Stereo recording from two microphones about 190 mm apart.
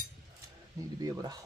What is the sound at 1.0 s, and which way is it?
Speech, 20° right (ahead or behind).